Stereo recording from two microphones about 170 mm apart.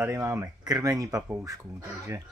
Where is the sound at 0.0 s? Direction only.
15° right (ahead or behind).